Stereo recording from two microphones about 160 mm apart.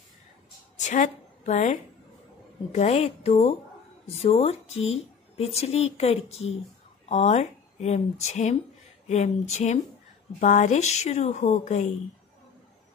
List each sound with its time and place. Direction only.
0.7 s a woman's voice: 50° left (ahead or behind)